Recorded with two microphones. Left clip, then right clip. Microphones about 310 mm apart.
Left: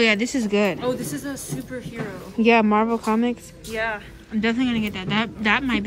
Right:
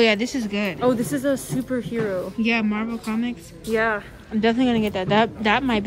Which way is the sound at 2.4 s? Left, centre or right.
Centre.